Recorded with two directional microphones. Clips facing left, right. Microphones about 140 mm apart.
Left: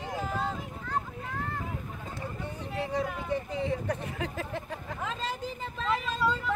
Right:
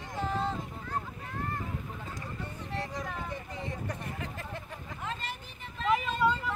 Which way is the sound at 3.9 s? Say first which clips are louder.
Left 5 dB; 90° left.